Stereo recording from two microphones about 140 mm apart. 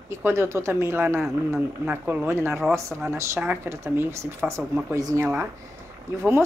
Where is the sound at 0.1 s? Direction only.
20° right (ahead or behind).